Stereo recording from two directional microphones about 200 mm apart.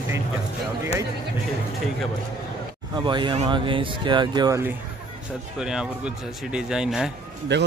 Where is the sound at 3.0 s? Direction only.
25° right (ahead or behind).